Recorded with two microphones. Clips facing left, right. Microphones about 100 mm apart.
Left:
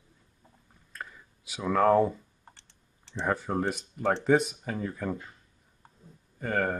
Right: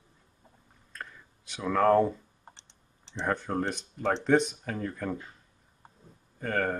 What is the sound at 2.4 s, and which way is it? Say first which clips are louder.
Computer keyboard: right 2 dB; 20° right (ahead or behind).